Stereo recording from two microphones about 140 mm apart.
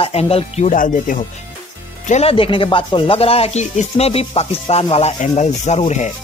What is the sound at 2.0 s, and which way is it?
Speech, 50° left (ahead or behind).